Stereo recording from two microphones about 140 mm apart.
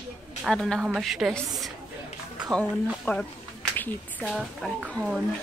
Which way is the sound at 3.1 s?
15° left (ahead or behind).